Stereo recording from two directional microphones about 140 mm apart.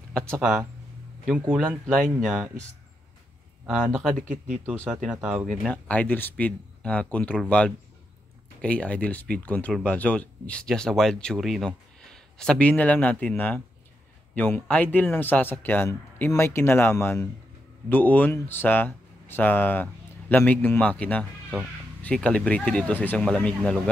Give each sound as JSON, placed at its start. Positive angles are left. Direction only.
{"t": 0.4, "sound": "speech", "side_deg": 0}
{"t": 1.9, "sound": "speech", "side_deg": 5}
{"t": 3.6, "sound": "speech", "side_deg": -5}